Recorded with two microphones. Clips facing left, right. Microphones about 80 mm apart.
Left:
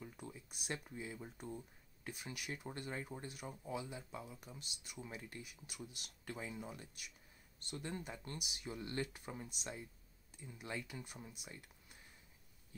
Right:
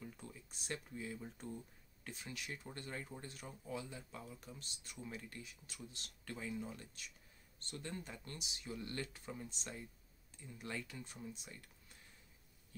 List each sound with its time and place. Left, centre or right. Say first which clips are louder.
0.0 s speech: left 1 dB; centre